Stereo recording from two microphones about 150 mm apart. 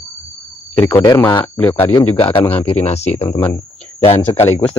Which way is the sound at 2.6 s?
45° left (ahead or behind).